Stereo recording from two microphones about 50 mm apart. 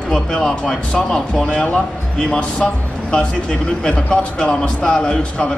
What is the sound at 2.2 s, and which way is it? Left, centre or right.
Speech, left.